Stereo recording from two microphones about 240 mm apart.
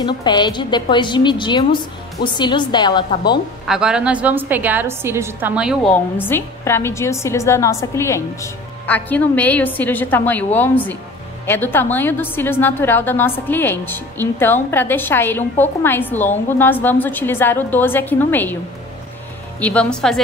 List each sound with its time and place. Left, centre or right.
0.0 s a woman's voice: centre
3.6 s a woman's voice: centre
6.2 s a woman's voice: centre
19.6 s speech: centre